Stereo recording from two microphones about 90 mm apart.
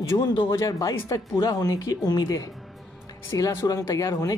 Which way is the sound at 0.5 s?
35° left (ahead or behind).